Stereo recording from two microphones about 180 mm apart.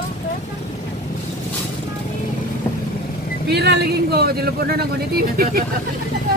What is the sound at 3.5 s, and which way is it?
Speech, 65° right (ahead or behind).